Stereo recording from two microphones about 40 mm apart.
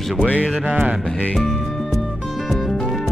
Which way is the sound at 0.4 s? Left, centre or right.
Right.